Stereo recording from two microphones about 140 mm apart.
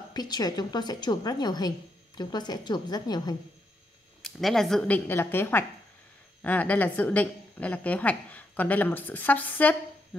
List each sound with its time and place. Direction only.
0.1 s a woman's voice: 30° left (ahead or behind)
4.2 s a woman's voice: centre (ahead or behind)